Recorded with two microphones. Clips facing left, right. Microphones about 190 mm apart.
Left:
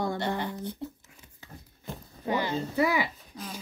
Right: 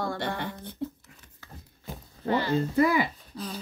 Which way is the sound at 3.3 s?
15° left (ahead or behind).